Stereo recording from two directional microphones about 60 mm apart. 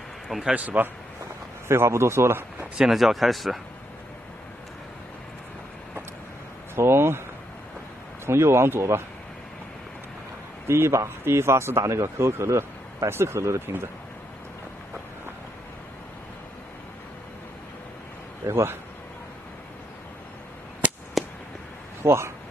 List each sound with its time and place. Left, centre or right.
0.5 s a man's voice: right
1.7 s speech: right
2.9 s speech: centre
6.7 s speech: right
8.3 s speech: right
10.7 s speech: right
18.5 s speech: right
21.2 s a sound: centre
22.0 s speech: right